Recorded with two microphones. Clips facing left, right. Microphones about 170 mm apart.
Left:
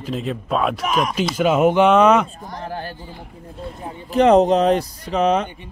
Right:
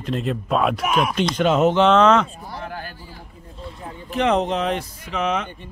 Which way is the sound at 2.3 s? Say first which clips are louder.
Left 1 dB; 10° right (ahead or behind).